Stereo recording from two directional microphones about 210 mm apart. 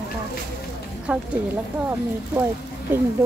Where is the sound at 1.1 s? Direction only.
5° right (ahead or behind).